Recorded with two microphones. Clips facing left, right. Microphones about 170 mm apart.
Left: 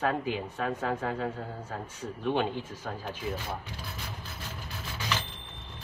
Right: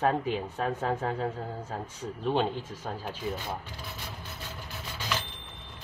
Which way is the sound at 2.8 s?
25° right (ahead or behind).